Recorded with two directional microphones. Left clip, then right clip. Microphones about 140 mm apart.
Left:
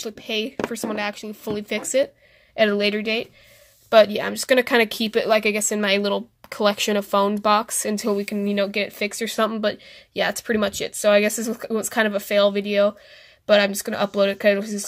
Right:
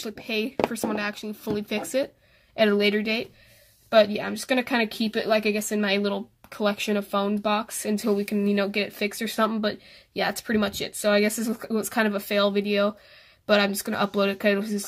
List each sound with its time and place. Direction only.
0.0 s speech: 5° left (ahead or behind)
3.9 s speech: 30° left (ahead or behind)
7.8 s speech: 15° left (ahead or behind)